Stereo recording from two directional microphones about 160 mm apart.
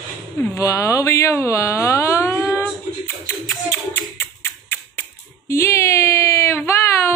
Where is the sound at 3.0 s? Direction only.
15° left (ahead or behind).